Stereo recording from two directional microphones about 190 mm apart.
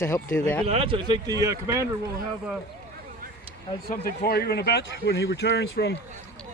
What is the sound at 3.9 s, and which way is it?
Speech, 55° left (ahead or behind).